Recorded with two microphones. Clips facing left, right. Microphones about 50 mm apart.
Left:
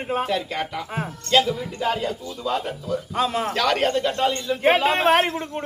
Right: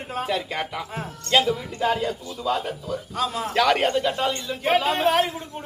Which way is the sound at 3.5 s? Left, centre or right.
Centre.